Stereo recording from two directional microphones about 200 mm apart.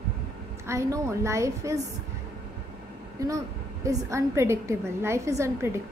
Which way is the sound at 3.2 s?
15° right (ahead or behind).